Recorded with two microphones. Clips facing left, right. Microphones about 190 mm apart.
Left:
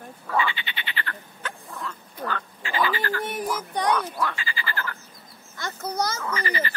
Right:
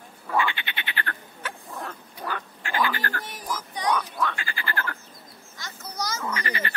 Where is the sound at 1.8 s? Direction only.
60° right (ahead or behind).